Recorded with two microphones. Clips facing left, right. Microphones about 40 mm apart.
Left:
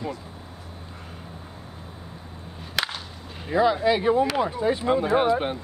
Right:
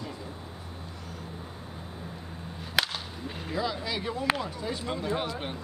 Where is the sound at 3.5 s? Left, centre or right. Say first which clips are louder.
Left 12 dB; left.